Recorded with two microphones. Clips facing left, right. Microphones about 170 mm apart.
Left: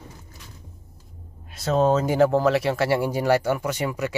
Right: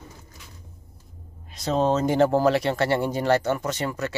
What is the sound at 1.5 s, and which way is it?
Speech, 5° left (ahead or behind).